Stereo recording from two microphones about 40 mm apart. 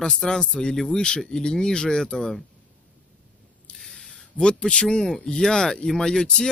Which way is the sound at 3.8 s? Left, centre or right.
Centre.